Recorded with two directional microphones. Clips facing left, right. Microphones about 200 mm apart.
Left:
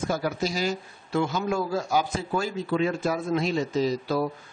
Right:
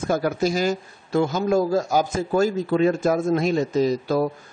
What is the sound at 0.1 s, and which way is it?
A man's voice, 50° right (ahead or behind).